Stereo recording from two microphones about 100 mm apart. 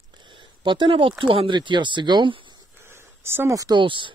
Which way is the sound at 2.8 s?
25° right (ahead or behind).